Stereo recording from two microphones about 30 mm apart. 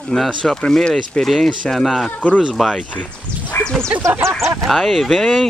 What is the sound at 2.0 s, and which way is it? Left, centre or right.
Speech, left.